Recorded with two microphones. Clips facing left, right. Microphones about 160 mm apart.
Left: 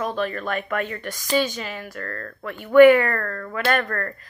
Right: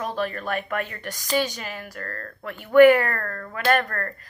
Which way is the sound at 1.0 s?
45° right (ahead or behind).